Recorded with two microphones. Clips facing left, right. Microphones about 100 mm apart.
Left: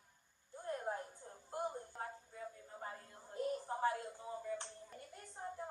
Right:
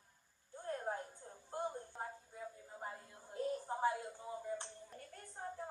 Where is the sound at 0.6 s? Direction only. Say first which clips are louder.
Even; 15° left (ahead or behind).